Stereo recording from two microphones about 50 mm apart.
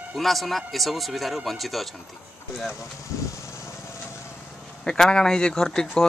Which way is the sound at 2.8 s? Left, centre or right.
Left.